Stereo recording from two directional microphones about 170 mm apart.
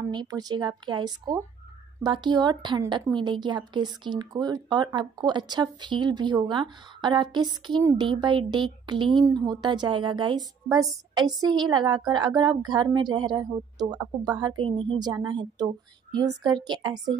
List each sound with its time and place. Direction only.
0.1 s a woman's voice: 25° right (ahead or behind)